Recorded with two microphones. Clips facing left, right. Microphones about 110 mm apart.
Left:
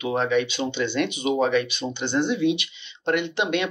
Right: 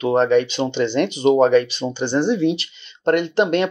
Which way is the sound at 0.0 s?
40° right (ahead or behind).